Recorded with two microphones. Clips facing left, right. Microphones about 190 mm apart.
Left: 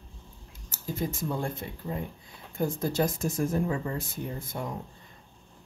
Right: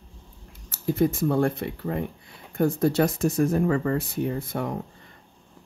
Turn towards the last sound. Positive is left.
turn(degrees=-65)  # may be behind; listen again after turning